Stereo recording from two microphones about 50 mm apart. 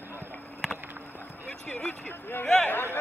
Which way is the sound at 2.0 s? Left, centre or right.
Left.